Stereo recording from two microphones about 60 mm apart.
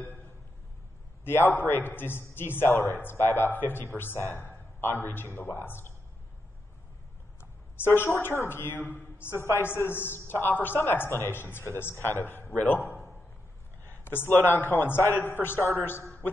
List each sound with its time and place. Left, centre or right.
1.2 s a man's voice: left
7.3 s a sound: left
8.2 s a man's voice: left